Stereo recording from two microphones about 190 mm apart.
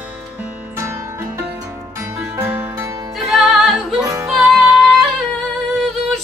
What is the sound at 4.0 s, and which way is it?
Music, 15° right (ahead or behind).